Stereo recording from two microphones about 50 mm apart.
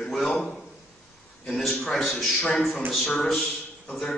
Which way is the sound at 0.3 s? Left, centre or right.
Centre.